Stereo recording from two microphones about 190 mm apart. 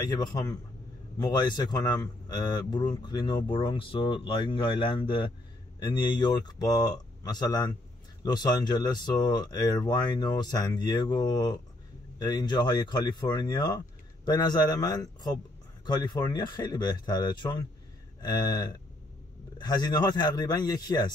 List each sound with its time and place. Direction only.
0.0 s speech: 20° left (ahead or behind)